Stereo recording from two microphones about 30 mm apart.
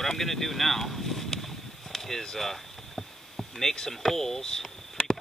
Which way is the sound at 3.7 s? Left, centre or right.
Centre.